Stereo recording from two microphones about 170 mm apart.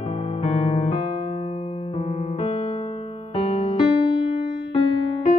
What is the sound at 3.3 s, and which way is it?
Music, 35° left (ahead or behind).